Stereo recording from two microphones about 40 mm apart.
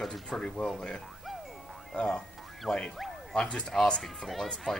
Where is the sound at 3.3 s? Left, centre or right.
Left.